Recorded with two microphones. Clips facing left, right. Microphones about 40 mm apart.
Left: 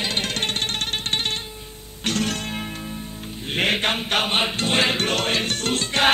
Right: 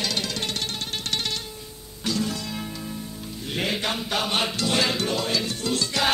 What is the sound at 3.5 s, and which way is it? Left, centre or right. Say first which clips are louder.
Music: left 5 dB; left.